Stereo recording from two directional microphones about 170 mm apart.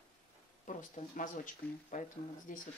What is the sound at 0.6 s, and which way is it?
Speech, 50° left (ahead or behind).